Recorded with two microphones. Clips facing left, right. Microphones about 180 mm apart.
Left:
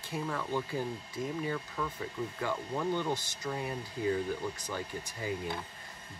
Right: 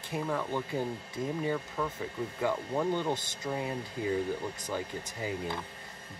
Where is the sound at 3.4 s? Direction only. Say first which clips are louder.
Right 2 dB; 20° right (ahead or behind).